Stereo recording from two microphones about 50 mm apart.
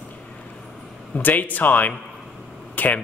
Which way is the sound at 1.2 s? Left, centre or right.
Left.